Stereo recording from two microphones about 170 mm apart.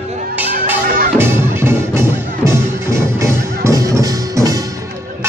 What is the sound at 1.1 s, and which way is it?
Music, 15° right (ahead or behind).